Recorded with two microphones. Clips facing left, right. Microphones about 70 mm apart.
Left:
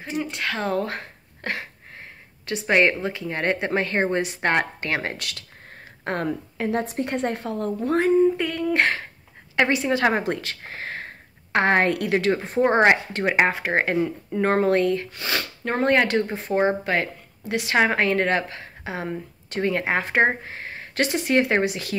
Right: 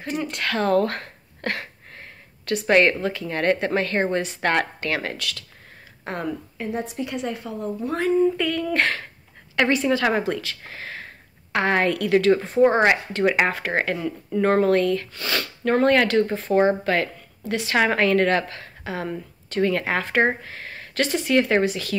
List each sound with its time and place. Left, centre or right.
0.0 s a sound: centre
2.8 s speech: centre
5.7 s a sound: left
6.6 s a woman's voice: left
6.9 s a woman's voice: left
7.8 s speech: left
8.2 s speech: left